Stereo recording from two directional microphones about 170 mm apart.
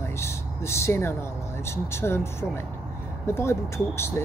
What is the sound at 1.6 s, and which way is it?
Speech, 15° left (ahead or behind).